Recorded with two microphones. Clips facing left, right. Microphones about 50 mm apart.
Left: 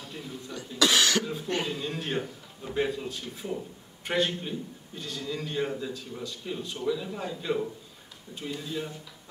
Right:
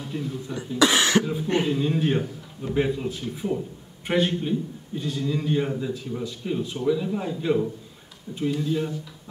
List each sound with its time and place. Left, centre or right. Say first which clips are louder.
0.1 s speech: right 11 dB; centre
0.5 s a man's voice: right 4 dB; right
2.1 s a man's voice: right 5 dB; centre
2.7 s a man's voice: right 5 dB; centre